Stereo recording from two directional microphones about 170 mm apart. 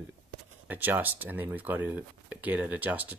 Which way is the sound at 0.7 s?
10° right (ahead or behind).